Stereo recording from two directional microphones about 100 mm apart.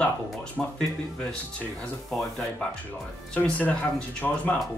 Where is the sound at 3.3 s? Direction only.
15° left (ahead or behind).